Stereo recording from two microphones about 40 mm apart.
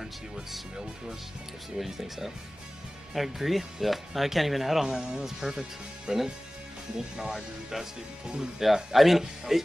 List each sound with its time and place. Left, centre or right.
1.8 s speech: centre
4.8 s speech: centre